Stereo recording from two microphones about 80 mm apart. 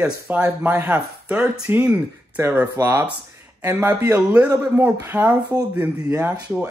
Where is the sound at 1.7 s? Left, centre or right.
Right.